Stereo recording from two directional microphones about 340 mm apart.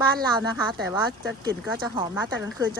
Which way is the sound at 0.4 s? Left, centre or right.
Right.